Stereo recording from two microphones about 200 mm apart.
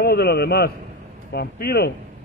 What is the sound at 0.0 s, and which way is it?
A man's voice, 50° left (ahead or behind).